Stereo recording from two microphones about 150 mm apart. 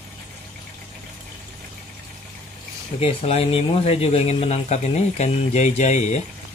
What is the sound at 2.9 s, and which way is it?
Speech, 40° left (ahead or behind).